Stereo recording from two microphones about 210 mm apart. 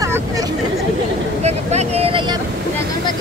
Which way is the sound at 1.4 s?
30° right (ahead or behind).